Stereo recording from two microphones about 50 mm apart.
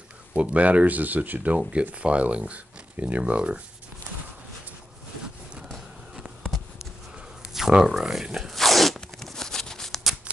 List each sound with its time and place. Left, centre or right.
0.3 s speech: right
1.6 s speech: right
7.5 s speech: centre
8.4 s zipper: centre